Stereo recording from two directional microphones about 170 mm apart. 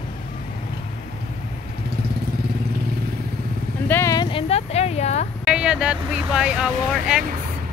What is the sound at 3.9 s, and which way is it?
Speech, 15° left (ahead or behind).